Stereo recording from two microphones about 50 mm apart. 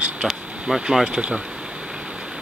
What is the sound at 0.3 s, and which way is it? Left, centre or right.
Speech, centre.